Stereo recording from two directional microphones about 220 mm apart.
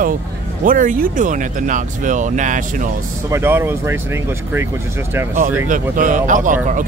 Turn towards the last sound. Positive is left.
turn(degrees=-35)  # may be behind; listen again after turning